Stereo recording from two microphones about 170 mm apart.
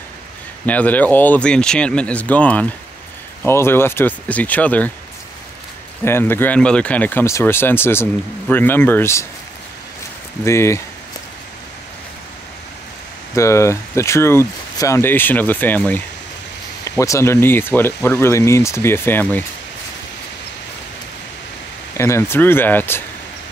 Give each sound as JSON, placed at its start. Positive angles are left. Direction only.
{"t": 0.7, "sound": "speech", "side_deg": 10}
{"t": 6.0, "sound": "speech", "side_deg": 15}
{"t": 10.4, "sound": "speech", "side_deg": 15}
{"t": 13.3, "sound": "speech", "side_deg": 20}
{"t": 21.9, "sound": "speech", "side_deg": 15}